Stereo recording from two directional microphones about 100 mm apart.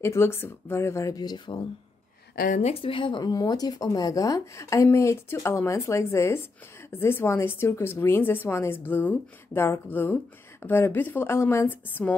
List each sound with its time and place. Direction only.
0.0 s speech: 25° left (ahead or behind)
1.1 s speech: 45° left (ahead or behind)
2.6 s speech: 70° left (ahead or behind)
3.3 s speech: 40° left (ahead or behind); by 12.2 s 20° left (ahead or behind)